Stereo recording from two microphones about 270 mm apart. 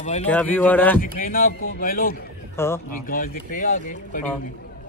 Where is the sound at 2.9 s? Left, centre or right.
Left.